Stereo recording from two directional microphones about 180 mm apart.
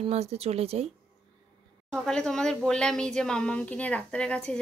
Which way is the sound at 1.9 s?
5° left (ahead or behind).